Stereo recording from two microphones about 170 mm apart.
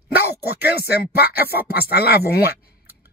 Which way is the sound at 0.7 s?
70° left (ahead or behind).